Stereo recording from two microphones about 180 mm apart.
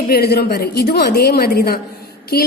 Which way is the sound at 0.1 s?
60° left (ahead or behind).